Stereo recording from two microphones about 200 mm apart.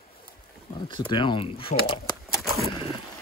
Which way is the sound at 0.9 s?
25° left (ahead or behind).